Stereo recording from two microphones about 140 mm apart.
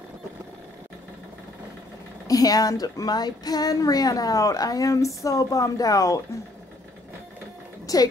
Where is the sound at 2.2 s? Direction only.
25° left (ahead or behind).